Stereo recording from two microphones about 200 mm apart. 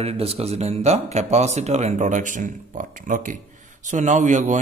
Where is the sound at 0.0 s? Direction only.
30° right (ahead or behind).